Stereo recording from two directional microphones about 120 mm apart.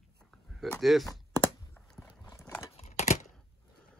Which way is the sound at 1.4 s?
10° left (ahead or behind).